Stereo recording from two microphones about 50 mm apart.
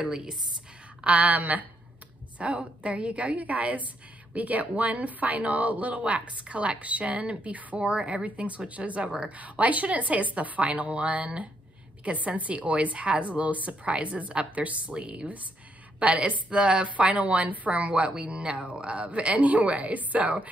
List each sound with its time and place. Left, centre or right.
0.0 s a woman's voice: centre